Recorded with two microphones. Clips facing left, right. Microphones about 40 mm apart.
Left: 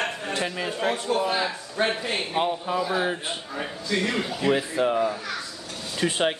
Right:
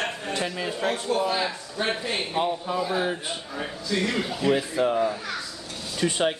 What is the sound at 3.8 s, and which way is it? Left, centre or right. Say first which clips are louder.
Speech: even; left.